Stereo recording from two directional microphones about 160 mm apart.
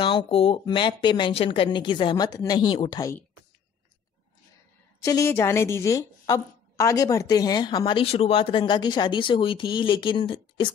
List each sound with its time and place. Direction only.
0.0 s a woman's voice: 30° left (ahead or behind)
5.0 s a woman's voice: 20° left (ahead or behind)